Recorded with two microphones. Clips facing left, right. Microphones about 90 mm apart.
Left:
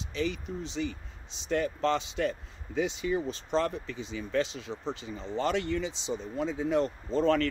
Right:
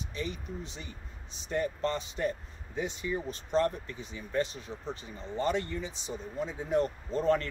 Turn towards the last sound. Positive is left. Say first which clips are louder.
# left 2 dB
turn(degrees=90)